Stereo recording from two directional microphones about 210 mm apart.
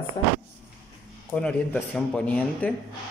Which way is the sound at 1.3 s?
10° left (ahead or behind).